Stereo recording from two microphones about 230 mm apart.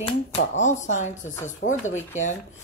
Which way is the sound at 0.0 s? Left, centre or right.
Left.